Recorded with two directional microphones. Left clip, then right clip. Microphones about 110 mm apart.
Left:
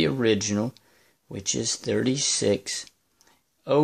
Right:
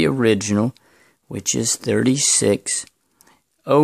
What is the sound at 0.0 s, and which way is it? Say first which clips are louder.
Speech: right 5 dB; 55° right (ahead or behind).